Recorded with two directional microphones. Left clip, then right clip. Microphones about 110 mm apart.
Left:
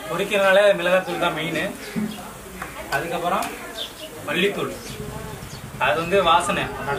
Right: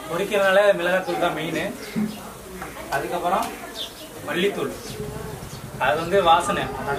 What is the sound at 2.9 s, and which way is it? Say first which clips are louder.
Speech: left 1 dB; 5° left (ahead or behind).